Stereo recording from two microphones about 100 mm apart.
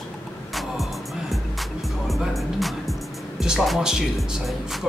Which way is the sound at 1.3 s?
Centre (ahead or behind).